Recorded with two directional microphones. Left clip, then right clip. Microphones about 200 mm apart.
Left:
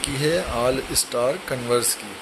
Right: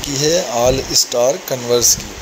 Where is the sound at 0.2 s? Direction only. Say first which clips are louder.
Right 7 dB; 10° right (ahead or behind).